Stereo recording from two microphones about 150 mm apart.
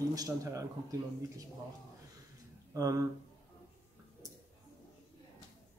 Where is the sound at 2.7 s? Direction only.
20° right (ahead or behind).